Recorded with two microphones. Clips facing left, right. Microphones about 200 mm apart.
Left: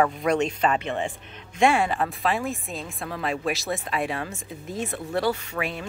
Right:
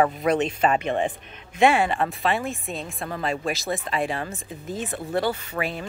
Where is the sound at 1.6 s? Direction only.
Centre (ahead or behind).